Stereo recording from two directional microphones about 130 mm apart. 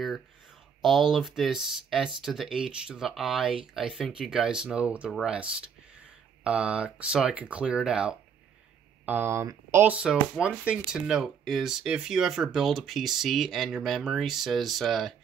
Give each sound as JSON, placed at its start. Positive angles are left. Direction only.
{"t": 0.8, "sound": "speech", "side_deg": 0}
{"t": 9.9, "sound": "speech", "side_deg": -5}